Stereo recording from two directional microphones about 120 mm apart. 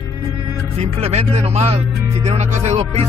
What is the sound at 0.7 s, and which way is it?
Music, 65° right (ahead or behind).